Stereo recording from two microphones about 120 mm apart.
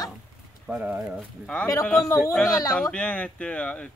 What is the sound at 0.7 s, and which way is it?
A woman's voice, 5° right (ahead or behind).